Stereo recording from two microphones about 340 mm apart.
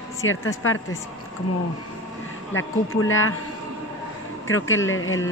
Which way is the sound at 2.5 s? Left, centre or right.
Left.